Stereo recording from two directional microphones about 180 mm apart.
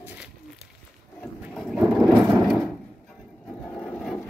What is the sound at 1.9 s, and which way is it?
Vehicle, centre (ahead or behind).